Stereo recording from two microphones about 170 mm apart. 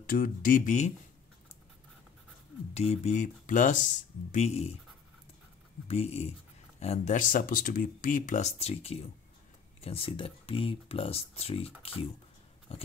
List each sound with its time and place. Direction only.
0.0 s speech: 55° left (ahead or behind)
2.7 s speech: 40° left (ahead or behind)
5.9 s speech: 35° left (ahead or behind)